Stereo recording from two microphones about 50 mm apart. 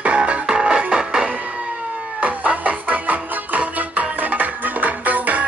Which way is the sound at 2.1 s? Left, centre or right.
Right.